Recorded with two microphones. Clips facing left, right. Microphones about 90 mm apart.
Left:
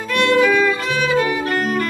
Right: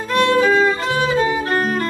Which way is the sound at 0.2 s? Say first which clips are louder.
Even; 25° right (ahead or behind).